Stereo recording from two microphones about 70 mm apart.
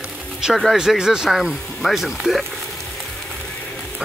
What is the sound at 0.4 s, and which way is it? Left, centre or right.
Speech, centre.